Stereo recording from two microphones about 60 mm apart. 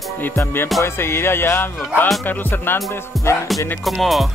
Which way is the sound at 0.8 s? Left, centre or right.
Left.